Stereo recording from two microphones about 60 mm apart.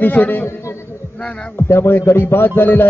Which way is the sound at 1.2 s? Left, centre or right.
Centre.